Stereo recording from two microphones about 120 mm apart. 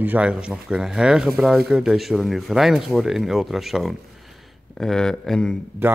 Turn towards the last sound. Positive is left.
turn(degrees=5)  # may be behind; listen again after turning